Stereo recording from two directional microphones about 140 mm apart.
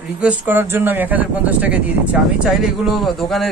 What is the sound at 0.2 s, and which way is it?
A woman's voice, 10° right (ahead or behind).